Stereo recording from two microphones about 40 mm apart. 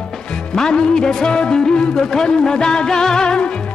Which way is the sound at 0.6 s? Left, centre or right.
Centre.